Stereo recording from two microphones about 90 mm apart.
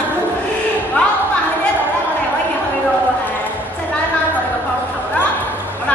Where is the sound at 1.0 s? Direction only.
15° left (ahead or behind).